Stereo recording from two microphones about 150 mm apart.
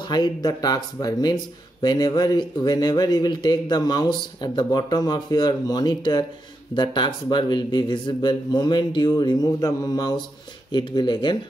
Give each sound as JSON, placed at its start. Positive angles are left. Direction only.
{"t": 0.0, "sound": "speech", "side_deg": 30}